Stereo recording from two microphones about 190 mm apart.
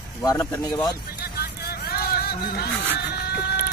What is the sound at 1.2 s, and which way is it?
Music, 55° left (ahead or behind).